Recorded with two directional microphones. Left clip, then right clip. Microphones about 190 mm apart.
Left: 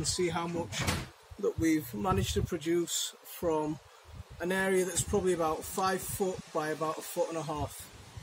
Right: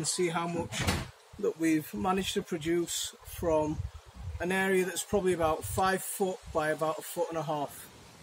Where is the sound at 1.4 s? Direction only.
10° right (ahead or behind).